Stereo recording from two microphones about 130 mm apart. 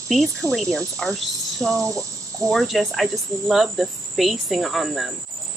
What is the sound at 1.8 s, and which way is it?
Speech, 25° right (ahead or behind).